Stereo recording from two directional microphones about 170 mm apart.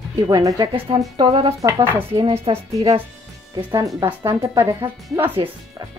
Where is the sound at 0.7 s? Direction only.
30° right (ahead or behind).